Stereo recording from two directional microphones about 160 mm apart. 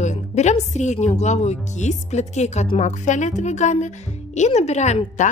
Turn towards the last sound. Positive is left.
turn(degrees=45)  # may be behind; listen again after turning